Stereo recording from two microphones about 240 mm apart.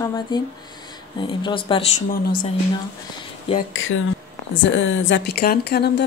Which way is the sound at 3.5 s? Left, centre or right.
Left.